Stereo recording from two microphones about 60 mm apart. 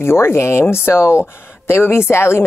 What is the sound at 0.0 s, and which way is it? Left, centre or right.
A woman's voice, left.